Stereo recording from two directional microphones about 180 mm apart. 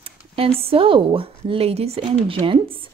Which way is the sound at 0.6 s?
30° right (ahead or behind).